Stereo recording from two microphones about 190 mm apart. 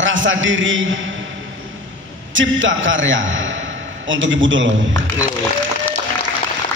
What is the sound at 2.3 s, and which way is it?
A man's voice, 80° right.